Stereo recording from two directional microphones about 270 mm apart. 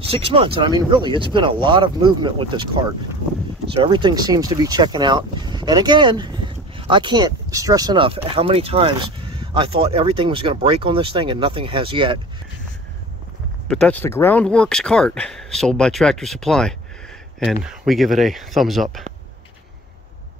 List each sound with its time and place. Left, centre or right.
0.1 s speech: right
13.7 s speech: centre